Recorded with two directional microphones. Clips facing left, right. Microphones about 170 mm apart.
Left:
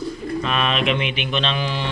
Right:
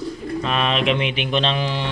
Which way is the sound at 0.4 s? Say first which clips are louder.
Right 1 dB; 30° right (ahead or behind).